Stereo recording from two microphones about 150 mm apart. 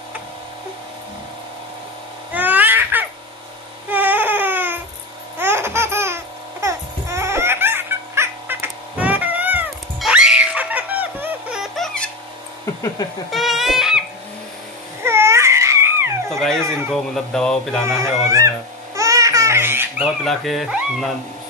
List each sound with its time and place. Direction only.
2.3 s a sound: 10° right (ahead or behind)
3.9 s baby cry: 10° right (ahead or behind)
5.4 s baby laughter: 15° right (ahead or behind)
9.9 s music: 5° right (ahead or behind)
11.7 s baby laughter: 5° left (ahead or behind)
13.3 s crying: centre (ahead or behind)
15.0 s music: 15° right (ahead or behind)
16.3 s a sound: 5° left (ahead or behind)
17.8 s speech: 20° right (ahead or behind)
18.9 s laughter: 20° right (ahead or behind)
20.2 s speech: centre (ahead or behind)